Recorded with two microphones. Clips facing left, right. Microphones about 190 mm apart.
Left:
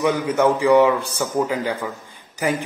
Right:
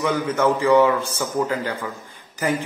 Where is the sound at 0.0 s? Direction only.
15° left (ahead or behind).